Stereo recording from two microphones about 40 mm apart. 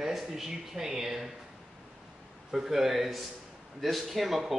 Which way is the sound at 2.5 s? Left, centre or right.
Centre.